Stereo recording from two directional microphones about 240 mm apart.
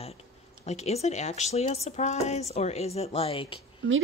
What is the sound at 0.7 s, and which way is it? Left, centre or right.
Speech, left.